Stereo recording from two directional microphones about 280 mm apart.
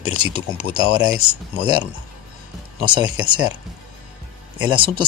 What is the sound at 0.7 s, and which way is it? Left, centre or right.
Speech, centre.